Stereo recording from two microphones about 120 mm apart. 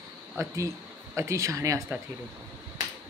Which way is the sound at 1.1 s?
25° right (ahead or behind).